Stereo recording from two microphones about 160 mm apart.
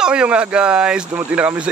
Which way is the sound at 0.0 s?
5° right (ahead or behind).